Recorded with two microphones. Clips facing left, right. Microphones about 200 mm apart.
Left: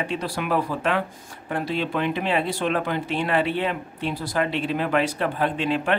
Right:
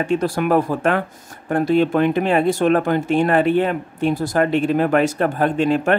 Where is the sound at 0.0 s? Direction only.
45° right (ahead or behind).